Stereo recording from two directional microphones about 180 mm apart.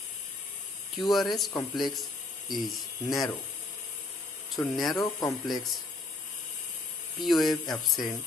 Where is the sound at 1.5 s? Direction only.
25° left (ahead or behind).